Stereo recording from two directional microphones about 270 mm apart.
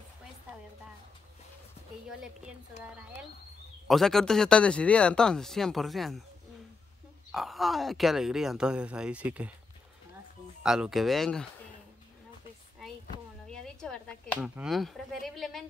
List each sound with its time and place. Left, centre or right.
3.8 s speech: centre
7.3 s speech: centre
10.6 s speech: centre
13.5 s speech: centre